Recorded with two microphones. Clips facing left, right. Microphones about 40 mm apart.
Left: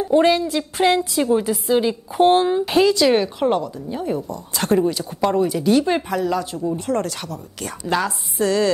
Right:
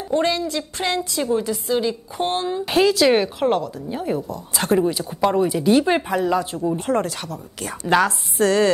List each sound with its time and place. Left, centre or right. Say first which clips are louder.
0.4 s a woman's voice: left 5 dB; centre
2.6 s a woman's voice: left 1 dB; centre
8.0 s a woman's voice: right 3 dB; right